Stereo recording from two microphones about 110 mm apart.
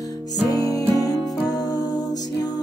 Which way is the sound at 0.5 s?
35° left (ahead or behind).